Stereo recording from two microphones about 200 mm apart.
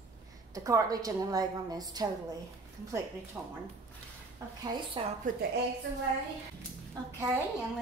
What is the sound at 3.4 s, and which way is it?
Speech, 15° right (ahead or behind).